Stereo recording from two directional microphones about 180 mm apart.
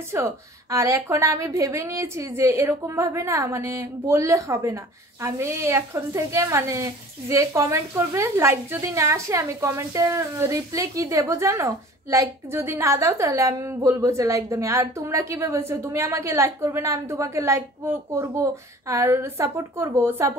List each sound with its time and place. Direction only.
0.1 s a woman's voice: 15° right (ahead or behind)